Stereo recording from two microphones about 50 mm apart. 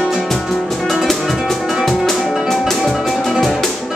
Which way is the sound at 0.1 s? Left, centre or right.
Centre.